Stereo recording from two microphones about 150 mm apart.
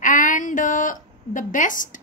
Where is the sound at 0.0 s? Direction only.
60° left (ahead or behind).